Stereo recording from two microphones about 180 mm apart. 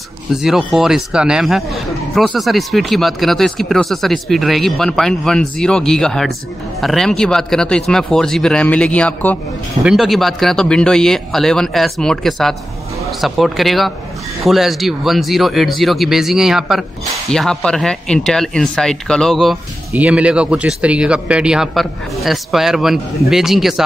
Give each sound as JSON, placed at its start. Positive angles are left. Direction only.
{"t": 0.3, "sound": "a man's voice", "side_deg": -5}